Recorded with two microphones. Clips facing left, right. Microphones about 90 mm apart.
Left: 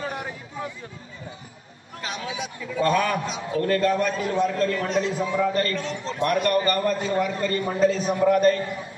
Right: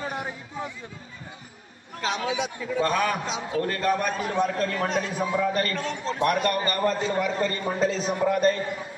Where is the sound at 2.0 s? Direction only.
30° right (ahead or behind).